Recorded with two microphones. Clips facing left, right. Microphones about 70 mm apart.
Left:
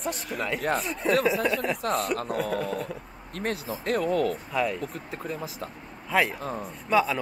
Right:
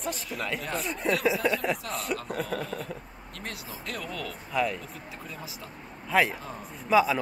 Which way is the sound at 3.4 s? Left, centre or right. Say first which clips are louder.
Left 9 dB; left.